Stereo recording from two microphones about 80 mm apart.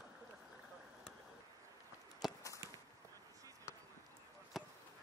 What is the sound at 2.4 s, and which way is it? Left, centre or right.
Walk, left.